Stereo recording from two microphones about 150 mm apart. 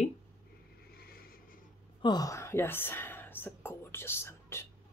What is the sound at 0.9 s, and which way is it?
Vehicle, 80° left.